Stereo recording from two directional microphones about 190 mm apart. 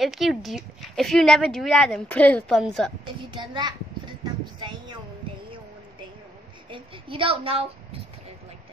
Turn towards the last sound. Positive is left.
turn(degrees=-30)  # may be behind; listen again after turning